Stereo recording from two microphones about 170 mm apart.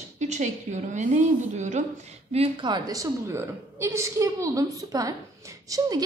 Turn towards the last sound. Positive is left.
turn(degrees=-20)  # may be behind; listen again after turning